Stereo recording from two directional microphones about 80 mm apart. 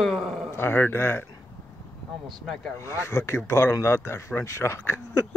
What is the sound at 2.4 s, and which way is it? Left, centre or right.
Speech, centre.